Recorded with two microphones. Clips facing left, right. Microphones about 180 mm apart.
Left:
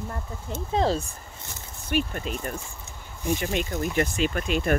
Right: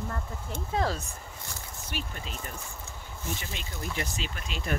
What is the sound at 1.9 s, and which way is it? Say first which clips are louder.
Speech: left 12 dB; 55° left (ahead or behind).